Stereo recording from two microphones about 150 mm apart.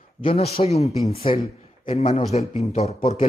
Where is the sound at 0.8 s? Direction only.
20° right (ahead or behind).